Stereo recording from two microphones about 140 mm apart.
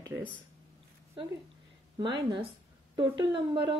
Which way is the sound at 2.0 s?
35° right (ahead or behind).